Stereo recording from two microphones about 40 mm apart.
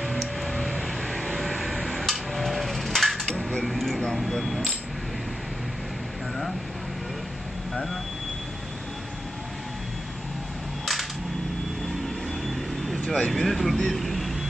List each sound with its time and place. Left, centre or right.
0.0 s vehicle: centre
3.3 s dishes: centre
3.6 s a sound: centre
7.7 s vehicle: centre
13.1 s vehicle: centre